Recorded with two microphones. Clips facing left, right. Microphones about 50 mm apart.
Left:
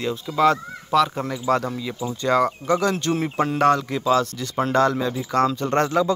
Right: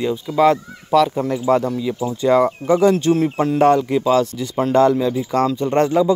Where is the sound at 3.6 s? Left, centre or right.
Right.